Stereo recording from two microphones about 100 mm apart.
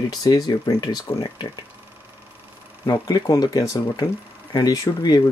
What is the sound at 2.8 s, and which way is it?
Speech, 40° left (ahead or behind).